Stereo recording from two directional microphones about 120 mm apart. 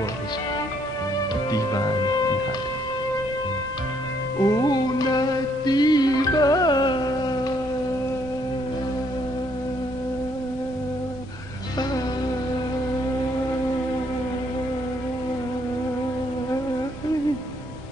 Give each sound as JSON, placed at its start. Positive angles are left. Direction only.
{"t": 1.5, "sound": "music", "side_deg": 35}
{"t": 4.4, "sound": "music", "side_deg": 30}